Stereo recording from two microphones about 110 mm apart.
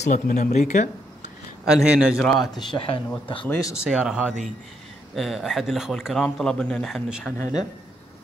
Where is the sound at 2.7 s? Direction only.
55° left (ahead or behind).